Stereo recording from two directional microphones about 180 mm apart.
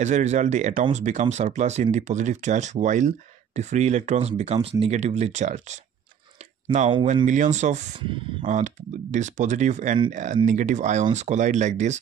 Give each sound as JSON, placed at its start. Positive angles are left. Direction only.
{"t": 0.0, "sound": "speech", "side_deg": -40}
{"t": 7.2, "sound": "speech", "side_deg": -40}
{"t": 8.0, "sound": "speech", "side_deg": -30}
{"t": 8.5, "sound": "speech", "side_deg": -40}